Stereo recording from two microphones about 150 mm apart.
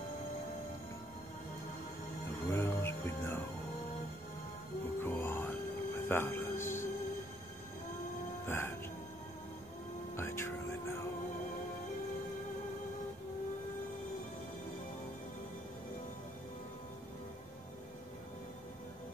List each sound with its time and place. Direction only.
2.5 s music: 15° left (ahead or behind)
5.0 s music: 15° left (ahead or behind)
8.5 s music: 15° left (ahead or behind)
10.1 s music: 15° left (ahead or behind)